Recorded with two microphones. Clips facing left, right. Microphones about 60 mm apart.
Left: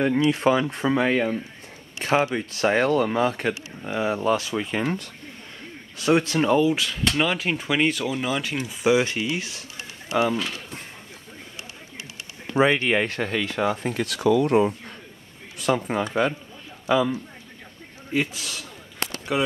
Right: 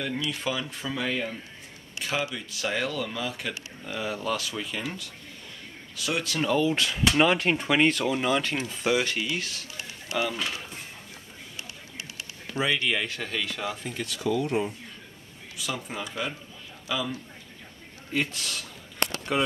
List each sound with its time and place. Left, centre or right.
0.0 s speech: left
3.8 s speech: left
6.7 s speech: centre
8.9 s speech: left
12.4 s speech: left
13.3 s speech: left
13.8 s speech: left
15.5 s a man's voice: left
18.1 s speech: centre